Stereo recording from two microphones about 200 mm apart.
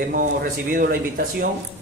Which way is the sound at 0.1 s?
45° right (ahead or behind).